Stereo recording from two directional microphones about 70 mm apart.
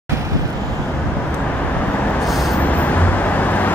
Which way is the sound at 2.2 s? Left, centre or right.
Centre.